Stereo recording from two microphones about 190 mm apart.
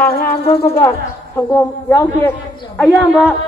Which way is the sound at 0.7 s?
10° left (ahead or behind).